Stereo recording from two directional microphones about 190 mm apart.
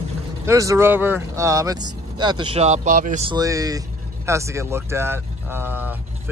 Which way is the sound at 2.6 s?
35° right (ahead or behind).